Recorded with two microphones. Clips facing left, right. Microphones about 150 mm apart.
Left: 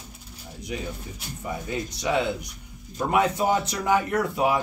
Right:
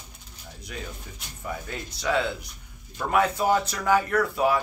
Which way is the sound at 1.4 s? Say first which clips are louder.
Left 4 dB; 15° left (ahead or behind).